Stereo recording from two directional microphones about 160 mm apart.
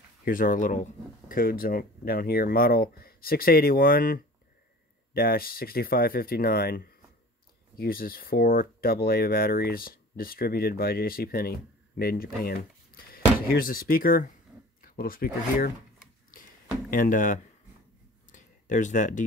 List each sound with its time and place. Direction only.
0.2 s speech: 60° left (ahead or behind)
1.3 s speech: 65° left (ahead or behind)
16.9 s speech: 55° left (ahead or behind)
18.3 s a sound: 50° left (ahead or behind)